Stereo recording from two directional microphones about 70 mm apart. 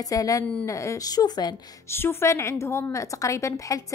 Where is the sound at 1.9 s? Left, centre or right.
Left.